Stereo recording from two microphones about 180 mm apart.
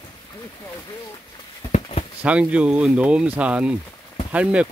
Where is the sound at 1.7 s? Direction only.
40° left (ahead or behind).